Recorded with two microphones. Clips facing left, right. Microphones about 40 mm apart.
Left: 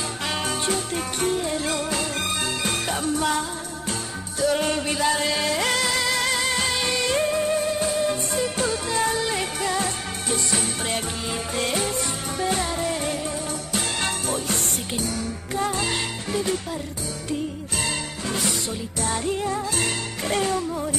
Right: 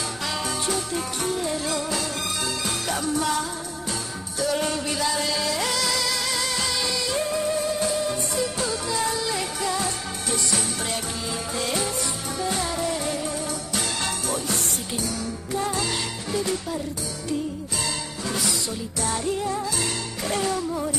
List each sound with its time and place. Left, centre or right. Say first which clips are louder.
0.2 s music: left 3 dB; left
12.7 s music: even; left
13.7 s music: left 2 dB; left
17.8 s music: left 2 dB; left
19.1 s music: left 1 dB; left